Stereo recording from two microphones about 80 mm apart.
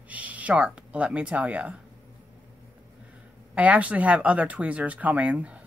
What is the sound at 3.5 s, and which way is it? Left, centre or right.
Speech, centre.